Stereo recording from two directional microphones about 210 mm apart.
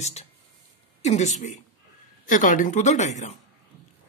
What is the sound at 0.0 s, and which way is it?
Speech, 30° left (ahead or behind).